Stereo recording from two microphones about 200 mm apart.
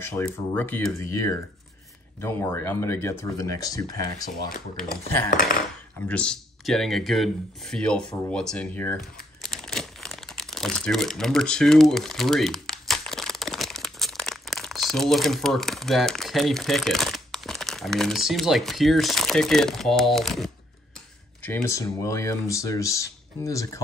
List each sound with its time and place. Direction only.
0.0 s speech: 10° left (ahead or behind)
6.0 s speech: 5° left (ahead or behind)